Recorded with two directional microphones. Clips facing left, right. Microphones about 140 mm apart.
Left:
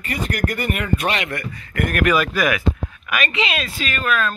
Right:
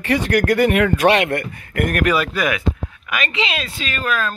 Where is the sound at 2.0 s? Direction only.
30° right (ahead or behind).